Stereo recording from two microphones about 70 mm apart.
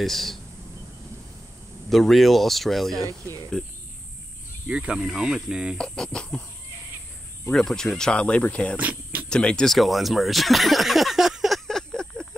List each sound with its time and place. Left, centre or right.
0.0 s speech: centre
1.9 s speech: centre
3.1 s speech: right
4.6 s speech: centre
5.8 s speech: centre
7.5 s speech: centre
8.7 s a sound: right
9.3 s speech: centre
9.7 s a sound: centre